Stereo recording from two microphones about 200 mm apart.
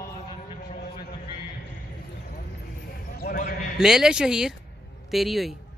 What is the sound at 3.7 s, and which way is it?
Speech, 5° right (ahead or behind).